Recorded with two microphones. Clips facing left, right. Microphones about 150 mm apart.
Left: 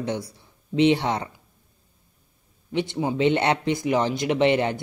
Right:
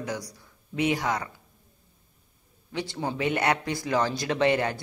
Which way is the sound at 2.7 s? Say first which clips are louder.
Left 6 dB; 20° left (ahead or behind).